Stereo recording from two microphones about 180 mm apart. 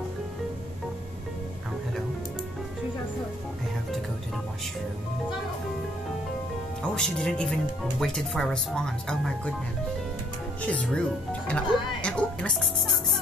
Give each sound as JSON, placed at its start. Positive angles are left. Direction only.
{"t": 6.8, "sound": "speech", "side_deg": 5}
{"t": 10.6, "sound": "speech", "side_deg": 5}